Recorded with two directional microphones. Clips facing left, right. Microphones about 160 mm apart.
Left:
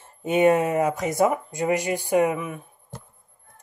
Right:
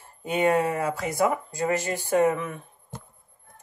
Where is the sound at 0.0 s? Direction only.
20° left (ahead or behind).